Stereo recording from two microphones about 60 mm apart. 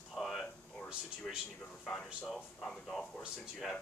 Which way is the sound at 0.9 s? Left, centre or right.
Centre.